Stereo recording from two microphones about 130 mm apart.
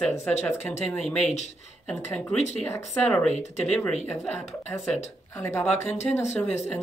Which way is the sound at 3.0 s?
10° left (ahead or behind).